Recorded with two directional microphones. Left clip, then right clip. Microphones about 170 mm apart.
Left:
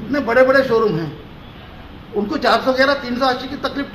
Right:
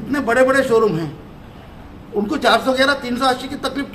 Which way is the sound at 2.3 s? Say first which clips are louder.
Even; 10° right (ahead or behind).